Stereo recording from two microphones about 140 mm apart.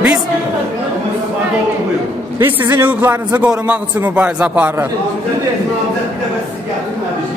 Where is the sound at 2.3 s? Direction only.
20° right (ahead or behind).